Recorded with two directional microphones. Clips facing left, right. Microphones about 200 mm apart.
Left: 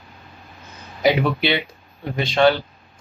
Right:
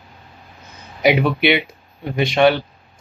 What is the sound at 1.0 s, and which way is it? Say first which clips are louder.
Speech: right 2 dB; 20° right (ahead or behind).